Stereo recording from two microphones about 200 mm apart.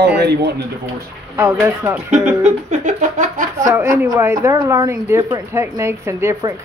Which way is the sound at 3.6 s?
15° right (ahead or behind).